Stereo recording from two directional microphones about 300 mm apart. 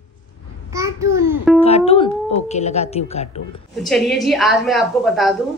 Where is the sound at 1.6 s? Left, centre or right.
Centre.